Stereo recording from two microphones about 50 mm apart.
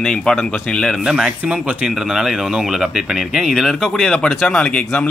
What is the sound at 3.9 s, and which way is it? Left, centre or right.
Speech, centre.